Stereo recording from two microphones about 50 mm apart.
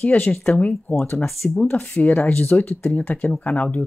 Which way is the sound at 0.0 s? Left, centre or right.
Left.